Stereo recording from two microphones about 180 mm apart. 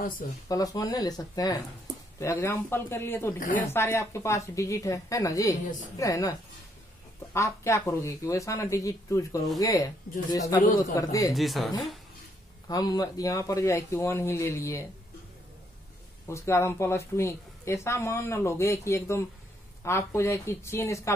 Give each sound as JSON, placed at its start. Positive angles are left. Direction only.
{"t": 0.5, "sound": "a woman's voice", "side_deg": 20}
{"t": 7.3, "sound": "a woman's voice", "side_deg": 15}
{"t": 11.3, "sound": "speech", "side_deg": 0}
{"t": 12.6, "sound": "a woman's voice", "side_deg": 20}
{"t": 16.3, "sound": "a woman's voice", "side_deg": 15}